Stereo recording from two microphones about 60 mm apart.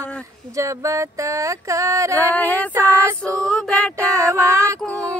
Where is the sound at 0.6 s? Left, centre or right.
Right.